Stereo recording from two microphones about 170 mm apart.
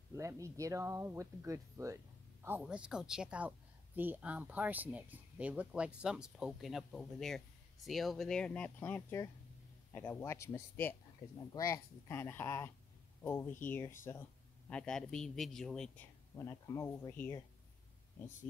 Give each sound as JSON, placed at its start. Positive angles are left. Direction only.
{"t": 0.1, "sound": "a woman's voice", "side_deg": -20}
{"t": 16.3, "sound": "speech", "side_deg": 15}